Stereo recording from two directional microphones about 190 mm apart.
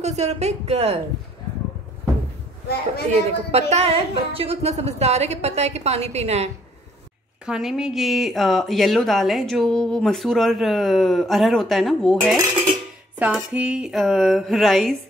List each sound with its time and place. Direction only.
0.0 s a woman's voice: 35° right (ahead or behind)
3.1 s a woman's voice: 35° right (ahead or behind)
7.4 s speech: 5° right (ahead or behind)